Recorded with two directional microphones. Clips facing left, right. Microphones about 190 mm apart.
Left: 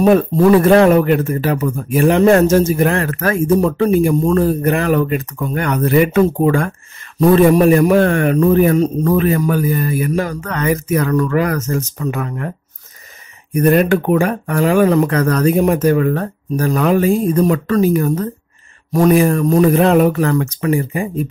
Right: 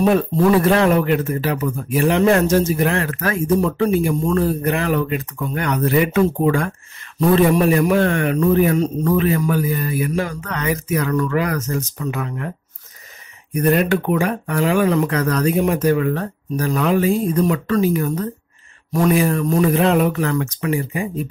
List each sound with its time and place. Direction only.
0.0 s a man's voice: 50° left (ahead or behind)
13.6 s a man's voice: 50° left (ahead or behind)